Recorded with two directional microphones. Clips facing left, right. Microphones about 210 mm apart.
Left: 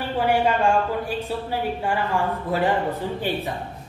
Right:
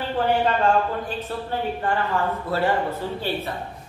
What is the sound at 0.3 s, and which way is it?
Speech, 10° left (ahead or behind).